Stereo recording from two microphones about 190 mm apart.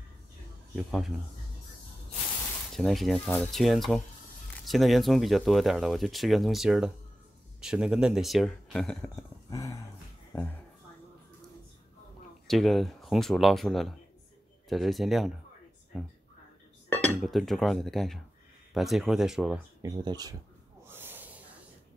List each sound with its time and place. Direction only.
0.7 s speech: centre (ahead or behind)
2.7 s speech: centre (ahead or behind)
9.1 s a sound: 15° left (ahead or behind)
10.3 s speech: 10° left (ahead or behind)
12.4 s speech: centre (ahead or behind)
19.8 s speech: 20° right (ahead or behind)
20.8 s snort: 10° right (ahead or behind)